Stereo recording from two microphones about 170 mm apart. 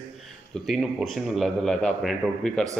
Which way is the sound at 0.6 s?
Centre (ahead or behind).